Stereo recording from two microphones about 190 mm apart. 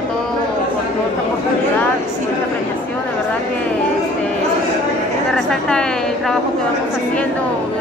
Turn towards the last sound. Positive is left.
turn(degrees=5)  # may be behind; listen again after turning